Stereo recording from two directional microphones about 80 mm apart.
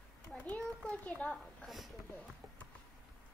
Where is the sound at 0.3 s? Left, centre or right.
Centre.